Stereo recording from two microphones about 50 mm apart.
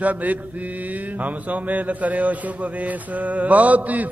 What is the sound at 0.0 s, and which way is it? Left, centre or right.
A man's voice, right.